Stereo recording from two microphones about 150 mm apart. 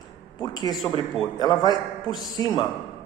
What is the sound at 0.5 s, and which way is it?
A woman's voice, 25° left (ahead or behind).